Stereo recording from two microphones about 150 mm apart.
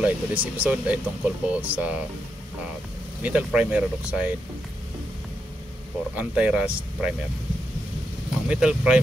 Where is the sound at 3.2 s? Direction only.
10° right (ahead or behind).